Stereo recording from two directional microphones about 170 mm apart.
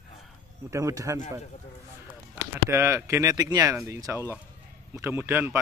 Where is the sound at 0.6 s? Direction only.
20° right (ahead or behind).